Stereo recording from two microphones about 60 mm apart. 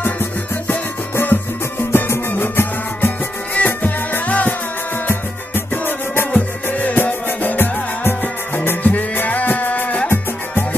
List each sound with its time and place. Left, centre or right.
0.0 s music: left
6.3 s music: left